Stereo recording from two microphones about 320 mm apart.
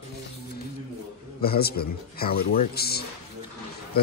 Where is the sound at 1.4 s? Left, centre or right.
Left.